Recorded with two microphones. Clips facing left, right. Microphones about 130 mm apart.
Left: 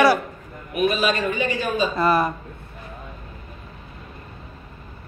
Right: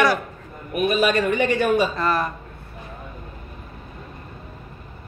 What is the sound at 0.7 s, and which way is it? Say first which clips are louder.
A man's voice: right 1 dB; 55° right (ahead or behind).